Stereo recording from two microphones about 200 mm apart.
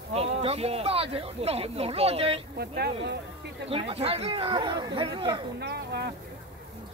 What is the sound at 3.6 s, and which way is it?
Speech, 30° right (ahead or behind).